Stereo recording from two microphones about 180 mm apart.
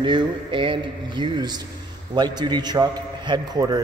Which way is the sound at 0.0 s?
25° right (ahead or behind).